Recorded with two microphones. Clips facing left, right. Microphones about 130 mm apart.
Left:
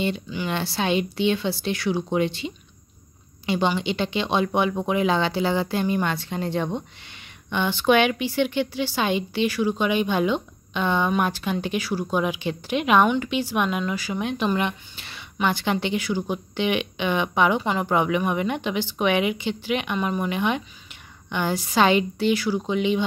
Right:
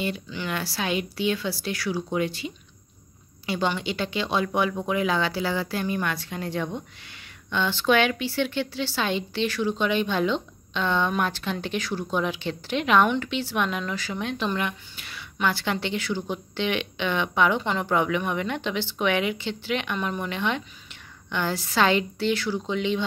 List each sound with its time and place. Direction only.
0.5 s speech: 25° left (ahead or behind)
7.4 s speech: 15° left (ahead or behind)